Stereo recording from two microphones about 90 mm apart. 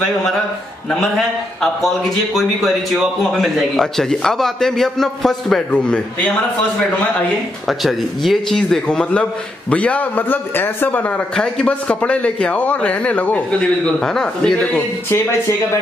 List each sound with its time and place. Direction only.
1.1 s a man's voice: 5° left (ahead or behind)
7.6 s a man's voice: centre (ahead or behind); by 11.1 s 20° left (ahead or behind)
11.3 s a man's voice: 10° left (ahead or behind)
15.0 s speech: 30° left (ahead or behind)